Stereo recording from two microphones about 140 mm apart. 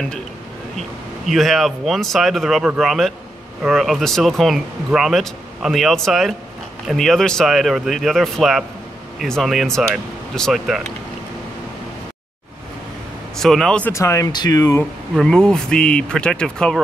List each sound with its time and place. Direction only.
0.7 s speech: centre (ahead or behind)
13.4 s speech: centre (ahead or behind)
13.9 s speech: 20° left (ahead or behind)
15.1 s speech: 5° left (ahead or behind)